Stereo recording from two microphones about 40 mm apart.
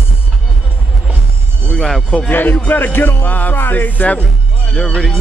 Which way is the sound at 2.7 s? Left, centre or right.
Left.